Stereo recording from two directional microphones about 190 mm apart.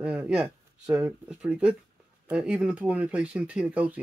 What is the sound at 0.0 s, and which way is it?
Speech, 5° right (ahead or behind).